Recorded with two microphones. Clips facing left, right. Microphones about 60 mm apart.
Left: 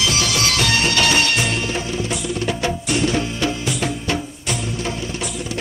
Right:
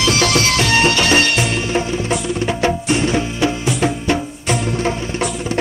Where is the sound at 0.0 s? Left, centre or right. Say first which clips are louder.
Right 5 dB; right.